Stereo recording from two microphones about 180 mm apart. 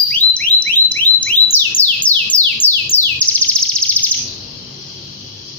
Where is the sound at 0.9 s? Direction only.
10° left (ahead or behind).